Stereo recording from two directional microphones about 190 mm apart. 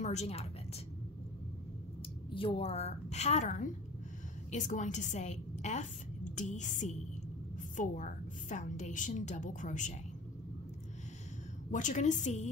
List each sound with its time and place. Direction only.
0.0 s a woman's voice: 35° left (ahead or behind)
2.3 s a woman's voice: 30° left (ahead or behind)
11.7 s a woman's voice: 40° left (ahead or behind)